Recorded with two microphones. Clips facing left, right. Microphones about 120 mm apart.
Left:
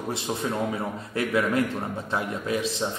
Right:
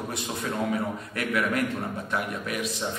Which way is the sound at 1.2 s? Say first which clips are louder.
Left 3 dB; 25° left (ahead or behind).